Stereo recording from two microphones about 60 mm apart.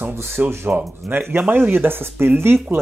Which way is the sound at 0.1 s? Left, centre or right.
Right.